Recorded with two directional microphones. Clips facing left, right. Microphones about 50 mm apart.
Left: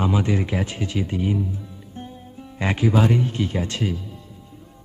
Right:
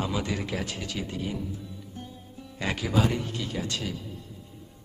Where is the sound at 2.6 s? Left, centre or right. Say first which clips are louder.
Left 6 dB; left.